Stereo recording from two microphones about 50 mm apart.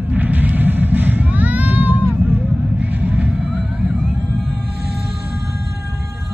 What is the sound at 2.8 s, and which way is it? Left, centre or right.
Fireworks, right.